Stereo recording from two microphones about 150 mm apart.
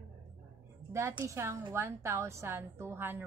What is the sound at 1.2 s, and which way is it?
A woman's voice, 20° right (ahead or behind).